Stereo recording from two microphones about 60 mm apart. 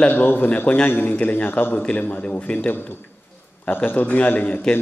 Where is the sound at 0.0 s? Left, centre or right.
Left.